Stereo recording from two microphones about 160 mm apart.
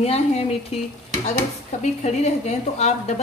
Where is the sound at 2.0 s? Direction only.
45° left (ahead or behind).